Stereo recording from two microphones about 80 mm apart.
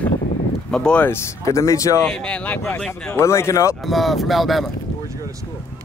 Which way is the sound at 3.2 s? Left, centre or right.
Left.